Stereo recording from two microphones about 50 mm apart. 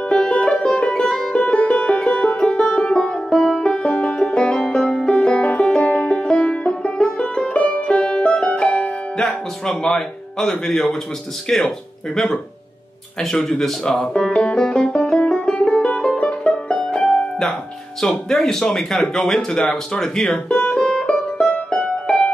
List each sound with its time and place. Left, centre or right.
0.1 s music: centre
3.6 s music: left
9.8 s speech: centre
14.9 s music: left
18.3 s speech: centre
20.7 s music: centre